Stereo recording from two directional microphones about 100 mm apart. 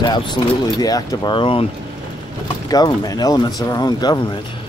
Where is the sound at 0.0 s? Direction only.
50° left (ahead or behind).